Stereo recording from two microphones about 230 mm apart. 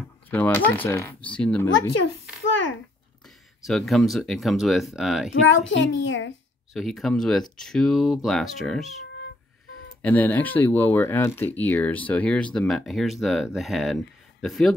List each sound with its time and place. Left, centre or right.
0.3 s speech: centre
3.6 s speech: centre
5.5 s a child's voice: left
6.7 s speech: centre
10.0 s speech: centre